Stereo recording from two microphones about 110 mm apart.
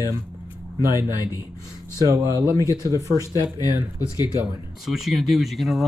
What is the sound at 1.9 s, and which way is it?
Speech, 30° right (ahead or behind).